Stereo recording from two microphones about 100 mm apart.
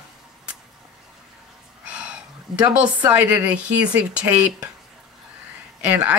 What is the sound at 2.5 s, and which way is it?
Speech, 45° right (ahead or behind).